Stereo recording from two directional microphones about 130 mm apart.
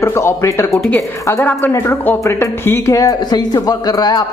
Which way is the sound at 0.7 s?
5° left (ahead or behind).